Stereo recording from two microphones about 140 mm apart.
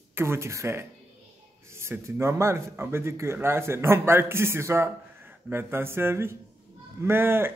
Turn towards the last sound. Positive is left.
turn(degrees=-15)  # may be behind; listen again after turning